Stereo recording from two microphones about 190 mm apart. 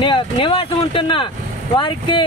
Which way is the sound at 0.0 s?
25° left (ahead or behind).